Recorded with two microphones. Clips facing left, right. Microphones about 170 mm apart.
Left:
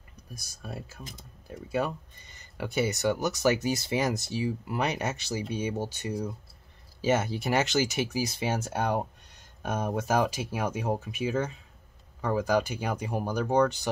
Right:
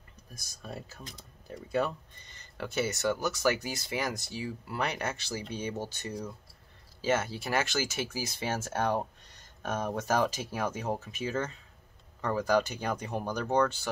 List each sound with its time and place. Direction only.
0.3 s speech: 10° left (ahead or behind)